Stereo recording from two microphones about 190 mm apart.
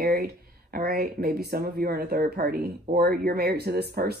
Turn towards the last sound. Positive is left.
turn(degrees=-55)  # may be behind; listen again after turning